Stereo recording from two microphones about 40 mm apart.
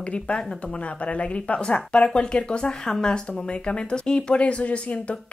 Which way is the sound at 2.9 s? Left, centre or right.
Centre.